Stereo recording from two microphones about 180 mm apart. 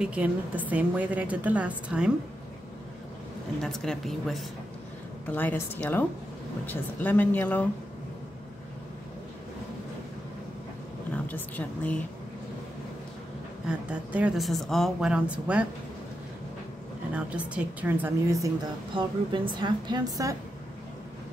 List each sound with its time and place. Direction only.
0.0 s a woman's voice: 5° right (ahead or behind)
3.6 s speech: centre (ahead or behind)
11.2 s speech: 10° left (ahead or behind)
13.7 s speech: 5° right (ahead or behind)
17.1 s a woman's voice: 10° right (ahead or behind)
18.9 s a woman's voice: 25° right (ahead or behind)